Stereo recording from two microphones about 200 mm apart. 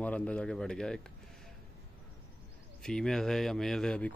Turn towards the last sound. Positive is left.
turn(degrees=5)  # may be behind; listen again after turning